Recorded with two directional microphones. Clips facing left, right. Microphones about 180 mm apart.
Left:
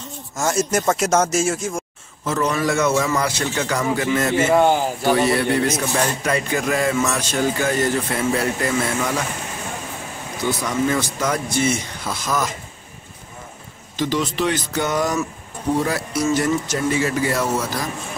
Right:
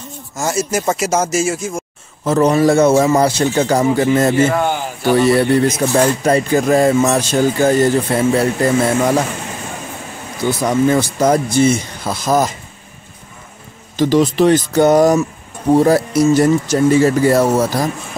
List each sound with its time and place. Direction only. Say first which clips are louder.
0.4 s speech: right 2 dB; 5° right (ahead or behind)
2.2 s a man's voice: right 9 dB; 35° right (ahead or behind)
10.6 s a man's voice: right 9 dB; 35° right (ahead or behind)
13.9 s a man's voice: right 9 dB; 40° right (ahead or behind)